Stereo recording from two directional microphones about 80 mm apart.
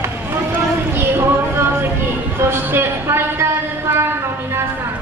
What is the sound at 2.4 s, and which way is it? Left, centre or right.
Speech, right.